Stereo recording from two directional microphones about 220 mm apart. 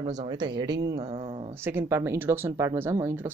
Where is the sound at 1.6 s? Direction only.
10° right (ahead or behind).